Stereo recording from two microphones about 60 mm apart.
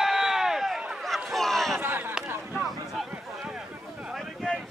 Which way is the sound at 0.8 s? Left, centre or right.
Centre.